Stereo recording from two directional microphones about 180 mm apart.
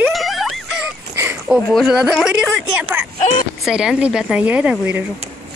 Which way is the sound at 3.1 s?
40° left (ahead or behind).